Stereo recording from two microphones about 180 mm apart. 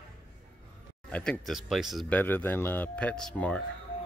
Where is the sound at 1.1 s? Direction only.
5° left (ahead or behind).